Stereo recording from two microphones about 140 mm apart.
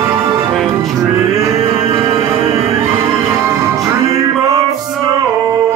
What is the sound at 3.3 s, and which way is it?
Music, 20° right (ahead or behind).